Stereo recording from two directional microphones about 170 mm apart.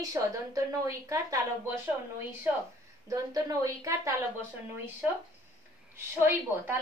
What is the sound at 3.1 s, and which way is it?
A woman's voice, 20° right (ahead or behind).